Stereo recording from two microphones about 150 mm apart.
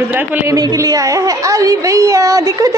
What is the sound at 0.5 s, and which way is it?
A woman's voice, 25° right (ahead or behind).